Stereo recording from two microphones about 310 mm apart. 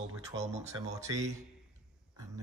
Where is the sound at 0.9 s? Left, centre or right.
Centre.